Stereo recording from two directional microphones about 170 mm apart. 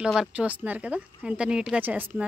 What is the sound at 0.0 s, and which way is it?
Speech, 5° right (ahead or behind).